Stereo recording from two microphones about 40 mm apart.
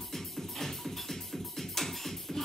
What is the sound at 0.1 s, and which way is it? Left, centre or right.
Music, centre.